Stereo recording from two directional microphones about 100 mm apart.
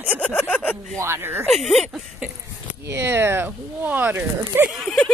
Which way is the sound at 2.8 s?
25° right (ahead or behind).